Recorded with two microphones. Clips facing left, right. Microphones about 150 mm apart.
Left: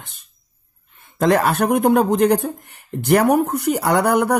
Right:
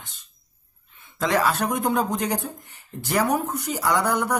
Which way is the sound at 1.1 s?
55° left (ahead or behind).